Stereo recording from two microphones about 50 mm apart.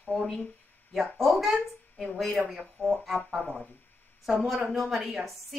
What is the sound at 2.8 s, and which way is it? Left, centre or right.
Speech, left.